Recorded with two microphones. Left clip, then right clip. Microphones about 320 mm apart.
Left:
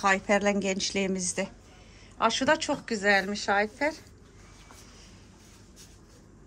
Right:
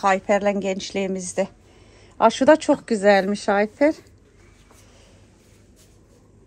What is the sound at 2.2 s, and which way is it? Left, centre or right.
A woman's voice, centre.